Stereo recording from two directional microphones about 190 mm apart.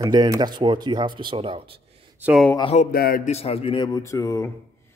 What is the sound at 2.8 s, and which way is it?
Speech, 50° left (ahead or behind).